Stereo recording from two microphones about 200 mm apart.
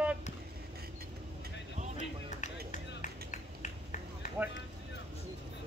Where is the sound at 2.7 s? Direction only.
35° left (ahead or behind).